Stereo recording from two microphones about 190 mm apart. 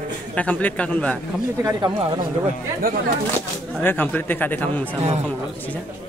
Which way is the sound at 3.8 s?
10° left (ahead or behind).